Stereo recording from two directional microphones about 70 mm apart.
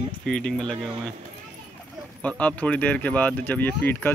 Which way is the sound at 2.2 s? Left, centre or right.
Centre.